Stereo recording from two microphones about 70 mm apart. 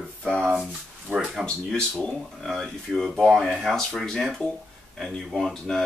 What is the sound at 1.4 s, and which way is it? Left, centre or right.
Speech, centre.